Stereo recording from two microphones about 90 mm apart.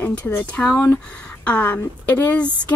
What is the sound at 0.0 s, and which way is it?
A woman's voice, 15° left (ahead or behind).